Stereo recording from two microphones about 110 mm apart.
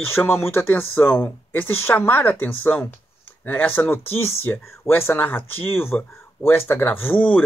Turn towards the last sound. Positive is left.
turn(degrees=15)  # may be behind; listen again after turning